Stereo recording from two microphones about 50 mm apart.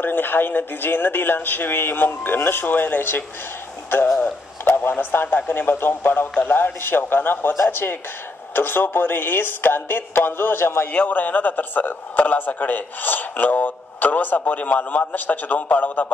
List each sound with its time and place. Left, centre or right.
0.0 s speech: left
4.2 s a sound: left
5.1 s speech: left
10.9 s speech: left